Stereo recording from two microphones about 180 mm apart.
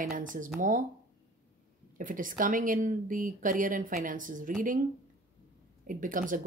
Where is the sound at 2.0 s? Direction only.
50° right (ahead or behind).